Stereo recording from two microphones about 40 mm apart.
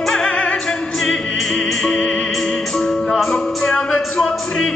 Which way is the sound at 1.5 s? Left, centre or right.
Centre.